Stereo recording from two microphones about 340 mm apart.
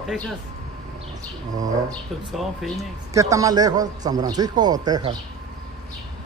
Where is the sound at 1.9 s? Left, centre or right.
Centre.